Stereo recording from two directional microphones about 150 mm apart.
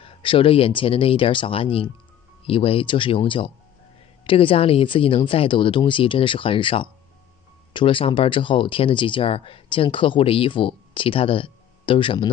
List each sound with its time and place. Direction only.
0.0 s speech: 35° left (ahead or behind)